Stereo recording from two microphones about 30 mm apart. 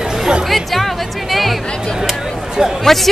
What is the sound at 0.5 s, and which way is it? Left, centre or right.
Music, centre.